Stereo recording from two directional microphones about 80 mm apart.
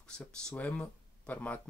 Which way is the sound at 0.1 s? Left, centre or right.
Centre.